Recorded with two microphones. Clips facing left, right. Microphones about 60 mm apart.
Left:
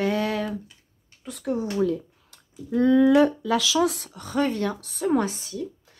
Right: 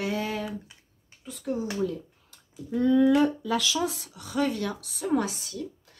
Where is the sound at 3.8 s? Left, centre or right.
Left.